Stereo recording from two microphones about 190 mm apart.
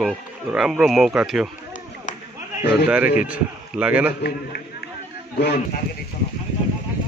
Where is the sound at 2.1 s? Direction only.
40° left (ahead or behind).